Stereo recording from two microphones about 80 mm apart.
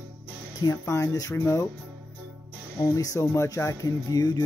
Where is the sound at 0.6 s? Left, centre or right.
Left.